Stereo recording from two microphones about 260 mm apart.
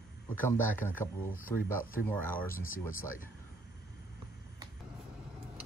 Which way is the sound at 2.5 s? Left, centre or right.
Left.